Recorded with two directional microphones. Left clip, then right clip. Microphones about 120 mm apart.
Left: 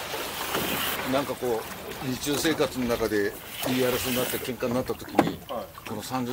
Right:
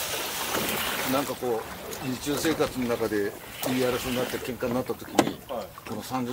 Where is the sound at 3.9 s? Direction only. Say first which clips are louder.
Left 1 dB; 55° left (ahead or behind).